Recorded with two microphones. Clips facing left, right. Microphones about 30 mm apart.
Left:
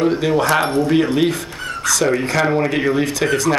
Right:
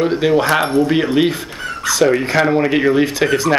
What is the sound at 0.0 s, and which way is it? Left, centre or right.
Speech, centre.